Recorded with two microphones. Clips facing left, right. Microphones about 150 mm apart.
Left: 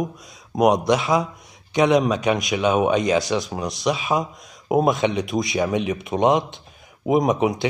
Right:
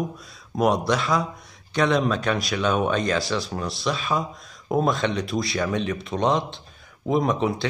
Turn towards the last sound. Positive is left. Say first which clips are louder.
# left 3 dB
turn(degrees=15)  # may be behind; listen again after turning